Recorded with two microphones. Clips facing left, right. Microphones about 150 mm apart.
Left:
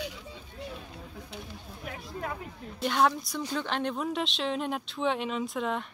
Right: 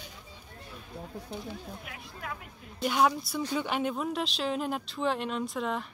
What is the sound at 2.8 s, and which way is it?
Speech, 5° right (ahead or behind).